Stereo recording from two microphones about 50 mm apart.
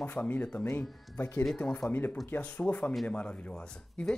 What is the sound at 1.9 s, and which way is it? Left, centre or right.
Speech, left.